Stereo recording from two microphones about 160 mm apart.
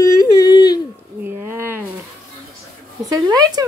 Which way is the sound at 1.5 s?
15° right (ahead or behind).